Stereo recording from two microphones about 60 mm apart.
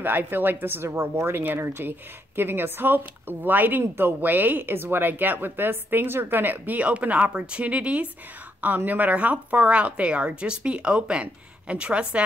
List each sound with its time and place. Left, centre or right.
0.0 s speech: right
0.8 s speech: right; by 12.2 s centre